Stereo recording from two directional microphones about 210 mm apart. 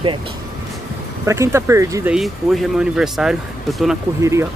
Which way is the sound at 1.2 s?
15° right (ahead or behind).